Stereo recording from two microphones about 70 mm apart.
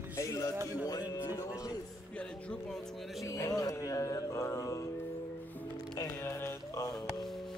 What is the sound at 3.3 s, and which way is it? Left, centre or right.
Speech, left.